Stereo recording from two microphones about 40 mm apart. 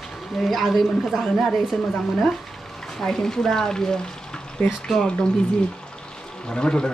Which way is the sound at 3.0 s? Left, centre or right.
Centre.